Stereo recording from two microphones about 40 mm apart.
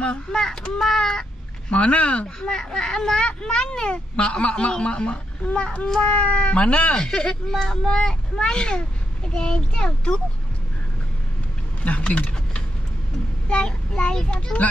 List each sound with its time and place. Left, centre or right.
0.3 s a child's voice: centre
1.7 s speech: left
2.2 s a child's voice: centre
5.5 s speech: left
7.5 s a child's voice: centre
11.8 s speech: left